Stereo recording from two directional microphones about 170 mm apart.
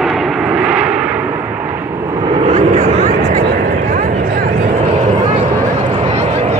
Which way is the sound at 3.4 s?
60° right (ahead or behind).